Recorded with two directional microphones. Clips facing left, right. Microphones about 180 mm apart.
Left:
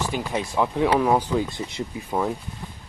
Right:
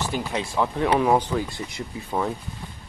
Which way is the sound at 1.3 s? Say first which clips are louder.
Left 3 dB; 20° left (ahead or behind).